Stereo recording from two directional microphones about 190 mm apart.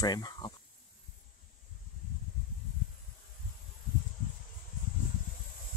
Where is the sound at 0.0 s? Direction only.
20° left (ahead or behind).